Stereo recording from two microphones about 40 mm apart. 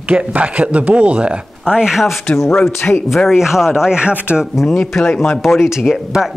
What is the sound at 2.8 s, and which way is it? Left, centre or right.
Speech, left.